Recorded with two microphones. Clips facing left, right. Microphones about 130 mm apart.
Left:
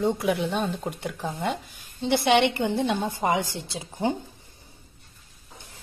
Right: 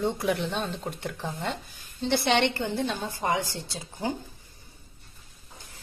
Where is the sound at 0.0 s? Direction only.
5° left (ahead or behind); by 4.1 s 20° left (ahead or behind).